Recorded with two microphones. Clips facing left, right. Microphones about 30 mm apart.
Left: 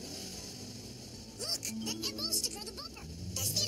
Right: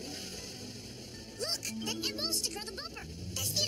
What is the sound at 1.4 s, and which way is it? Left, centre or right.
Speech, right.